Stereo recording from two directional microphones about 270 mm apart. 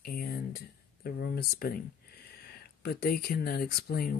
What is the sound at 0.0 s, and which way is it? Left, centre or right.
Speech, left.